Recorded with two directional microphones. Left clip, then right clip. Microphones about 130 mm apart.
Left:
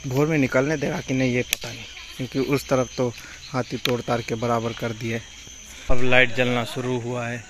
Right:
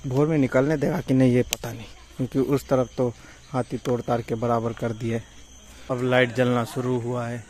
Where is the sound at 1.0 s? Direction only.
55° right (ahead or behind).